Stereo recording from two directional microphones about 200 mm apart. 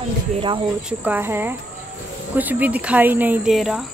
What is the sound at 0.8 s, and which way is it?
Speech, 10° right (ahead or behind).